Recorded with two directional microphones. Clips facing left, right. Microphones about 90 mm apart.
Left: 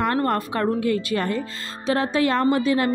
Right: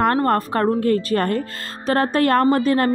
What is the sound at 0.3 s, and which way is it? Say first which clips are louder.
Speech: right 4 dB; 40° right (ahead or behind).